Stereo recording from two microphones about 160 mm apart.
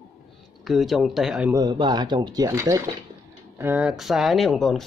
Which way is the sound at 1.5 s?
30° right (ahead or behind).